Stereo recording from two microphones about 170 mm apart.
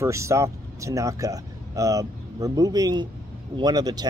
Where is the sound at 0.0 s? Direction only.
15° right (ahead or behind).